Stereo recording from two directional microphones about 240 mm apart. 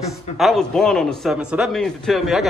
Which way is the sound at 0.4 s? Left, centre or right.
Centre.